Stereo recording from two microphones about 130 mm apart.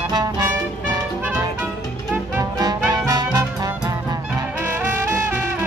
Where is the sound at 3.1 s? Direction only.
30° right (ahead or behind).